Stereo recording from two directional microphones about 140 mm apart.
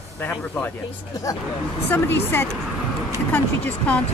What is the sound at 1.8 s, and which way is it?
Speech, 15° left (ahead or behind).